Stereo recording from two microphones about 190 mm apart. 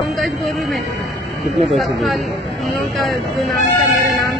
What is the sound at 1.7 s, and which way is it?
Speech, centre (ahead or behind).